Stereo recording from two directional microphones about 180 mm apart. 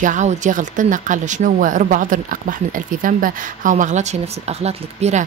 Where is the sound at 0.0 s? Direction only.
45° right (ahead or behind).